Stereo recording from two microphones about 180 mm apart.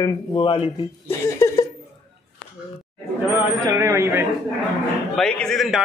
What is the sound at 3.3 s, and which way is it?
Speech, 15° right (ahead or behind).